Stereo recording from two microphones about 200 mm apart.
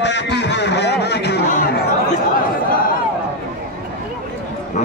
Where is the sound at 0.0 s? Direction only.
60° left (ahead or behind).